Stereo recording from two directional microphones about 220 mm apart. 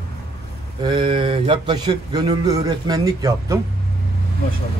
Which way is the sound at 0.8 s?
20° right (ahead or behind).